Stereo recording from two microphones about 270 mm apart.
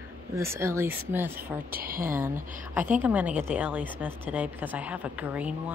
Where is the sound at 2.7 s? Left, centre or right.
Centre.